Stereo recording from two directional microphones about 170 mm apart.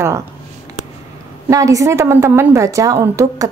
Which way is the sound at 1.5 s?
20° right (ahead or behind).